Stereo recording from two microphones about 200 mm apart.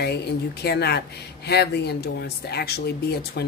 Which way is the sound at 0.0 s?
55° left (ahead or behind).